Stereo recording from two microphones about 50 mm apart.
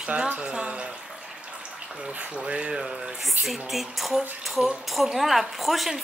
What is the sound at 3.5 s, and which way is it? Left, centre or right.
A woman's voice, centre.